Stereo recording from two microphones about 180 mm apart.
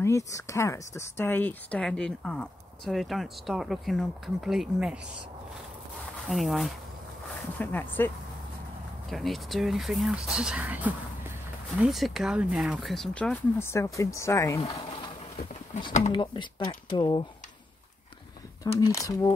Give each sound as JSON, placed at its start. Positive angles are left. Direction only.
{"t": 0.0, "sound": "speech", "side_deg": 15}
{"t": 6.2, "sound": "speech", "side_deg": 0}
{"t": 9.1, "sound": "speech", "side_deg": 0}
{"t": 16.1, "sound": "speech", "side_deg": 25}
{"t": 18.8, "sound": "speech", "side_deg": 20}